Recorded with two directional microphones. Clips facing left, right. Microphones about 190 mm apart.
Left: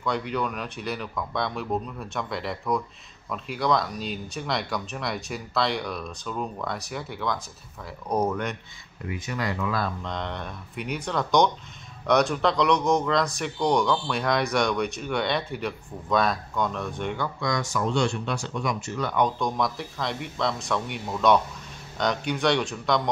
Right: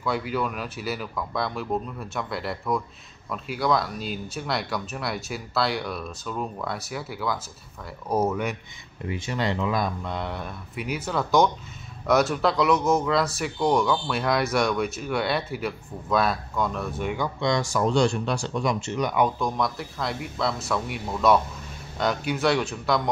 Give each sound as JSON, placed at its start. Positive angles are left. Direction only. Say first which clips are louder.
{"t": 0.0, "sound": "speech", "louder": "right 1 dB", "side_deg": -5}
{"t": 9.0, "sound": "speech", "louder": "right 3 dB", "side_deg": -30}
{"t": 17.4, "sound": "speech", "louder": "right 5 dB", "side_deg": -30}
{"t": 18.9, "sound": "speech", "louder": "even", "side_deg": -10}